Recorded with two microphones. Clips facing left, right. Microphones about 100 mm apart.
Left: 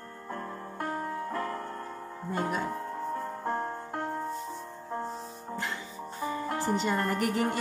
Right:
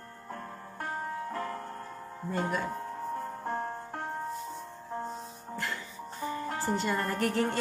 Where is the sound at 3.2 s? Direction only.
40° left (ahead or behind).